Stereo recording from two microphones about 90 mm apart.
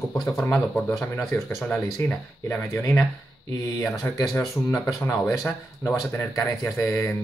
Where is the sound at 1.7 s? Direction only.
20° left (ahead or behind).